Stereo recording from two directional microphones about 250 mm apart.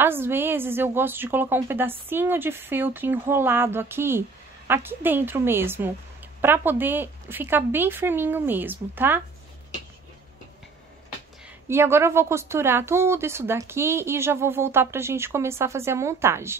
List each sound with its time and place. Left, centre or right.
0.0 s speech: centre
11.6 s speech: centre